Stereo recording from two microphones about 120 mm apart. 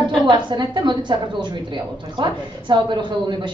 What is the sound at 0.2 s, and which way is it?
A woman's voice, 40° right (ahead or behind).